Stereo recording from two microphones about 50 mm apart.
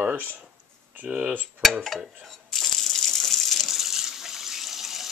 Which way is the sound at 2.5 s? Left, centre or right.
Centre.